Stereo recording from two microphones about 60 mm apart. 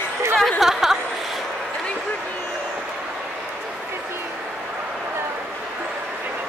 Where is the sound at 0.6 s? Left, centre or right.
Centre.